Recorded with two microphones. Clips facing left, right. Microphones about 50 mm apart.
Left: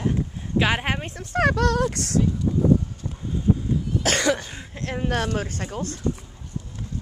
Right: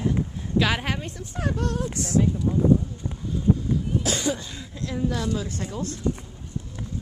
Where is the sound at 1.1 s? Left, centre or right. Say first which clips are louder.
Left 8 dB; left.